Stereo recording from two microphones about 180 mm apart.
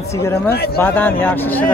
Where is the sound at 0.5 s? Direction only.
60° left (ahead or behind).